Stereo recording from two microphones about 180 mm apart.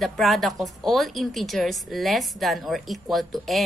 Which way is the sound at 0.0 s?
Centre (ahead or behind).